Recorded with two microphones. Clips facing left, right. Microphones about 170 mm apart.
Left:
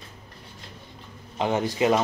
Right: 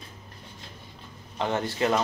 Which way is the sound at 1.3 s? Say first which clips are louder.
Left 3 dB; 15° left (ahead or behind).